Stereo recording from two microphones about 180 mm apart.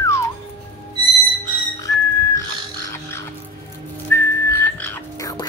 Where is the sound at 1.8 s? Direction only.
20° left (ahead or behind).